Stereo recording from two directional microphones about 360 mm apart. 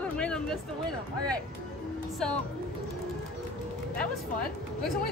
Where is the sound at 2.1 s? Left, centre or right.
Centre.